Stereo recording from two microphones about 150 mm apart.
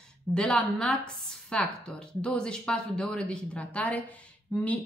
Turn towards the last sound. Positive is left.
turn(degrees=5)  # may be behind; listen again after turning